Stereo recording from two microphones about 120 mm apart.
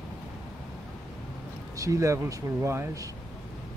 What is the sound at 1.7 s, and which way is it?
Speech, 30° right (ahead or behind).